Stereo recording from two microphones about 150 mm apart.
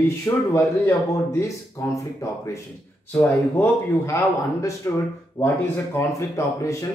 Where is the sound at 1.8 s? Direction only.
20° left (ahead or behind).